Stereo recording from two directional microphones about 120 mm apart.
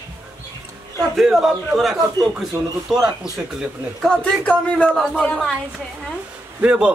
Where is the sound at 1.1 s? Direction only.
Centre (ahead or behind).